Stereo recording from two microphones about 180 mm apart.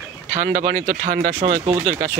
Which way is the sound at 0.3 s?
40° right (ahead or behind).